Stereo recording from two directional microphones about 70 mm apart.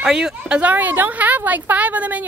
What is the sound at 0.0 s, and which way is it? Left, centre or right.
A woman's voice, centre.